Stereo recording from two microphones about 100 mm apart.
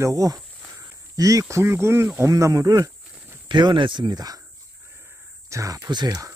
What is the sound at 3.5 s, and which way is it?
Speech, 50° right (ahead or behind).